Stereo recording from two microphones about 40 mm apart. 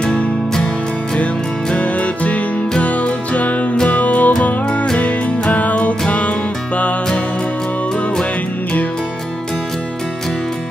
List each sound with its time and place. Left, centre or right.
0.0 s music: centre
1.8 s music: left
5.5 s music: left